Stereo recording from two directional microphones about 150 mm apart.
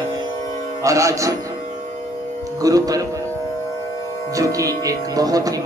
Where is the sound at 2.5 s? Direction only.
25° right (ahead or behind).